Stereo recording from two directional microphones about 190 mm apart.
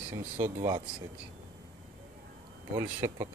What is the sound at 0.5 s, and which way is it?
Speech, 25° right (ahead or behind).